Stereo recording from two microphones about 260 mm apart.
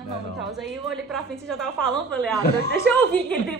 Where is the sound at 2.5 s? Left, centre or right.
Left.